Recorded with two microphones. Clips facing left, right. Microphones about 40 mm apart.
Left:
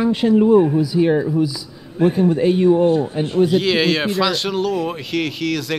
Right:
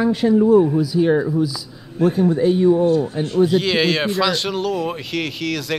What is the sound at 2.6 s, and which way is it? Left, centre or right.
Speech, left.